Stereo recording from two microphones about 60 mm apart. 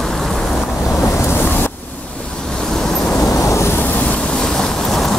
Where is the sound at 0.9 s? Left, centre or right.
Left.